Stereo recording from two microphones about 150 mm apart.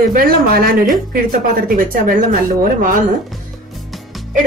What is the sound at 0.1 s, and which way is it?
A woman's voice, 70° right (ahead or behind).